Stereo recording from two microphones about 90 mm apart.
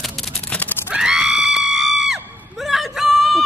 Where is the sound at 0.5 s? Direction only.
20° left (ahead or behind).